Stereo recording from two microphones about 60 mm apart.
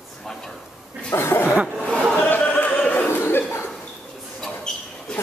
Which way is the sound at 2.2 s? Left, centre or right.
Left.